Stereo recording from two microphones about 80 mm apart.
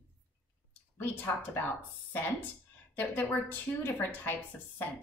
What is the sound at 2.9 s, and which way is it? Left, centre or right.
Speech, left.